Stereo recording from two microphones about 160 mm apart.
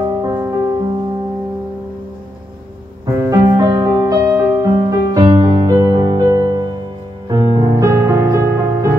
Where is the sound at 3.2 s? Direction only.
20° right (ahead or behind).